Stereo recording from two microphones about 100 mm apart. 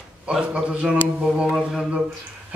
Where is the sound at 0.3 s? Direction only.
10° right (ahead or behind).